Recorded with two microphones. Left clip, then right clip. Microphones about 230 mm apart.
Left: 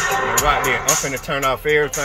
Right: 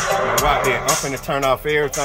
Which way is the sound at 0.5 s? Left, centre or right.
Centre.